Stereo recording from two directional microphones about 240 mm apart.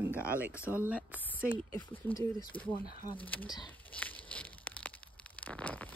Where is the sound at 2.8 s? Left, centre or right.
Right.